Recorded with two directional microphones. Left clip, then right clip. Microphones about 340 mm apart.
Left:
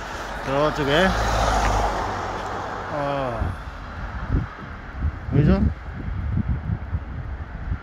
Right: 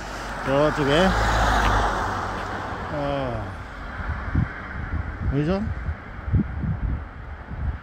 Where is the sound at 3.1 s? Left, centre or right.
Centre.